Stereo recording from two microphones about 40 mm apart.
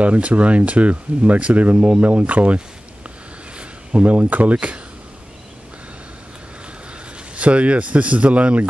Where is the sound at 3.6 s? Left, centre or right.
Right.